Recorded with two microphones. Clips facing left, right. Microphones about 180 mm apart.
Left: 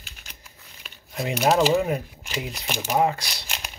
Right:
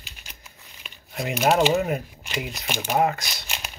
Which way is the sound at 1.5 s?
35° left (ahead or behind).